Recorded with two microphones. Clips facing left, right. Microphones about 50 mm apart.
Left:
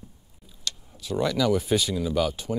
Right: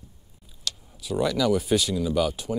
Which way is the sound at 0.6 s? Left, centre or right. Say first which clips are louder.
Even; centre.